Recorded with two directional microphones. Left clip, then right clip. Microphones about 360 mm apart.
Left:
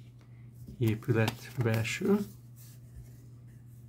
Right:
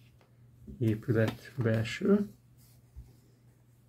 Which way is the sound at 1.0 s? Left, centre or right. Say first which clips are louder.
Right 1 dB; centre.